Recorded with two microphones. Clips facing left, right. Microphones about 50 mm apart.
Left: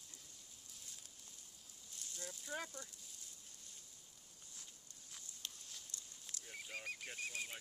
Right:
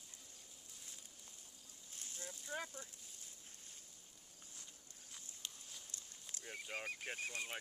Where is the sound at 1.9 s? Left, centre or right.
Right.